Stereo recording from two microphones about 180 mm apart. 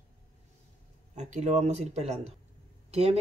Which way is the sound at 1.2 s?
40° right (ahead or behind).